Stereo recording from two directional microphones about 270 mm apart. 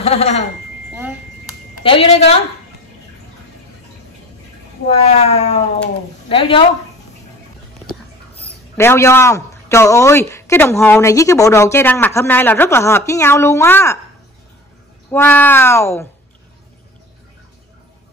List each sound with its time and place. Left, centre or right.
0.0 s speech: left
1.8 s speech: left
4.8 s speech: left
8.7 s speech: centre
15.0 s speech: centre